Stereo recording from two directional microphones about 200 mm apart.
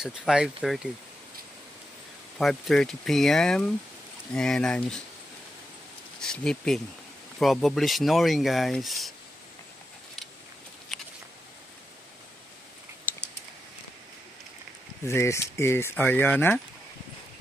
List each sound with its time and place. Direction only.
0.0 s speech: 5° right (ahead or behind)
2.3 s speech: centre (ahead or behind)
6.2 s speech: 5° left (ahead or behind)
10.9 s a sound: centre (ahead or behind)
15.0 s speech: 15° left (ahead or behind)